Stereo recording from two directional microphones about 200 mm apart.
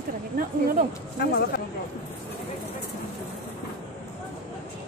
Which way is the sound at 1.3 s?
50° left (ahead or behind).